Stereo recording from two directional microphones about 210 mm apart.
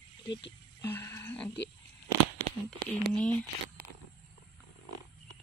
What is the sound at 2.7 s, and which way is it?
Speech, 5° left (ahead or behind).